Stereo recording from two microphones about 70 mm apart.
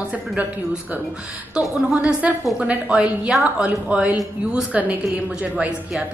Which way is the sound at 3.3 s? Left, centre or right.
Centre.